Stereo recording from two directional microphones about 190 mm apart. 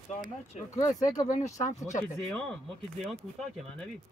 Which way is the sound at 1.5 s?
40° left (ahead or behind).